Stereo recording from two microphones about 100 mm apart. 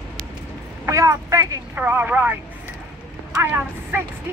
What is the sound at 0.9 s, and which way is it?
Speech, 30° right (ahead or behind).